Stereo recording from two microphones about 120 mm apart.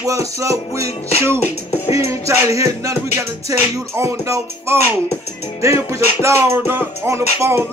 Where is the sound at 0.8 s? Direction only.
60° left (ahead or behind).